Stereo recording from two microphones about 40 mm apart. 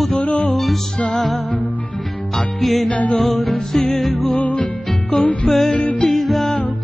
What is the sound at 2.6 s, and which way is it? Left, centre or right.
Music, centre.